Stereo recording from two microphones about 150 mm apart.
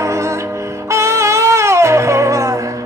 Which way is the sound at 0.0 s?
20° right (ahead or behind).